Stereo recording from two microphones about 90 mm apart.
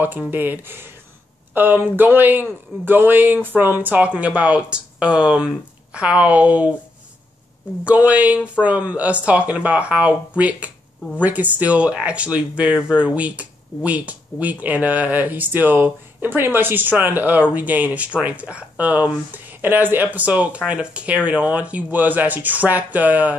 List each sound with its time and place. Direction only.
0.0 s speech: 20° right (ahead or behind)
7.8 s speech: 15° right (ahead or behind)